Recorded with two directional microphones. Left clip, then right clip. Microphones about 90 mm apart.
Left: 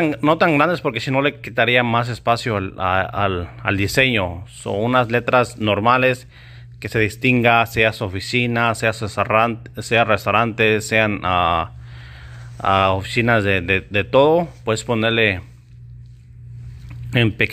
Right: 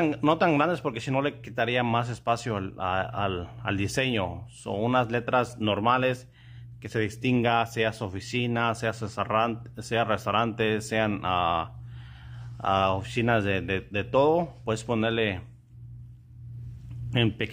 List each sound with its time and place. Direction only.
0.1 s speech: 25° left (ahead or behind)
17.1 s a man's voice: 30° left (ahead or behind)